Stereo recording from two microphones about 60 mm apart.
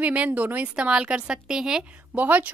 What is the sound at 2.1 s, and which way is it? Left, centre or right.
Speech, right.